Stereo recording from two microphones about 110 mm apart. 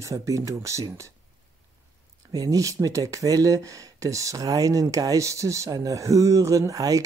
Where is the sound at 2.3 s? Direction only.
35° right (ahead or behind).